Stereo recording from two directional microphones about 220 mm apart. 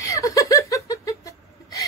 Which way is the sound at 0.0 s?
15° left (ahead or behind).